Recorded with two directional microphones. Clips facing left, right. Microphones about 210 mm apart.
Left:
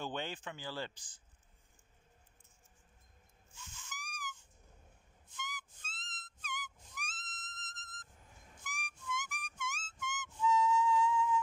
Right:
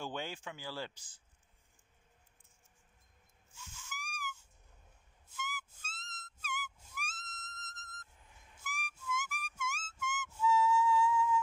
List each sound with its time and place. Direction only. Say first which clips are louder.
0.0 s speech: left 1 dB; 10° right (ahead or behind)
3.5 s hiss: right 2 dB; 10° right (ahead or behind)
5.3 s whistle: right 3 dB; 5° right (ahead or behind)
7.7 s a sound: right 1 dB; 10° right (ahead or behind)
8.5 s music: right 3 dB; 5° right (ahead or behind)